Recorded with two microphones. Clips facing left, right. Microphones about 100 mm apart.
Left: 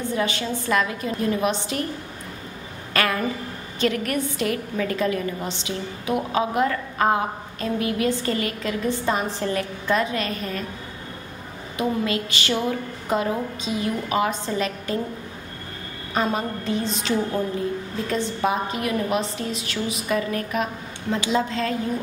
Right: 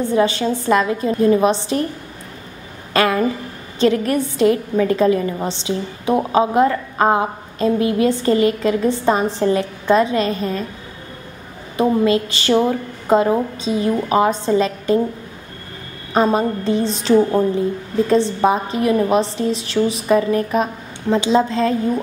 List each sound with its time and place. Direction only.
0.1 s a woman's voice: 30° right (ahead or behind)
2.9 s a woman's voice: 25° right (ahead or behind)
11.7 s a woman's voice: 30° right (ahead or behind)
16.1 s a woman's voice: 35° right (ahead or behind)